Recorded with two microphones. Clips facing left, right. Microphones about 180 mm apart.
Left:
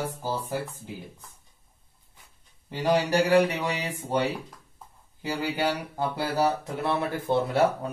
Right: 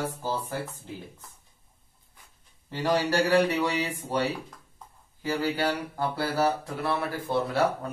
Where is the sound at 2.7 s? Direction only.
15° left (ahead or behind).